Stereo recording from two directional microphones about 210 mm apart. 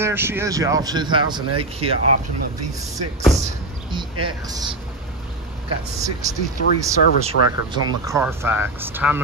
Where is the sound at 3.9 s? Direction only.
20° right (ahead or behind).